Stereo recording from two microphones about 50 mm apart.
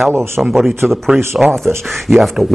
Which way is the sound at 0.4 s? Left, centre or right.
Centre.